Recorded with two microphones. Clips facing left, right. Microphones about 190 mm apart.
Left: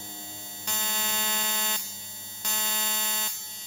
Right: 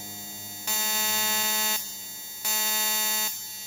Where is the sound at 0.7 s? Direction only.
5° right (ahead or behind).